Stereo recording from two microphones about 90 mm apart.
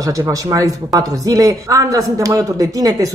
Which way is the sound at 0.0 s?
40° right (ahead or behind).